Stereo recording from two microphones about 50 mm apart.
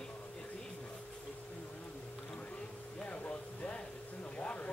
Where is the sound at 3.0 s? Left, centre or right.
Left.